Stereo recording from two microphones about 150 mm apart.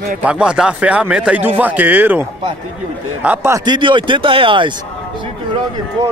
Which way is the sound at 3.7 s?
35° right (ahead or behind).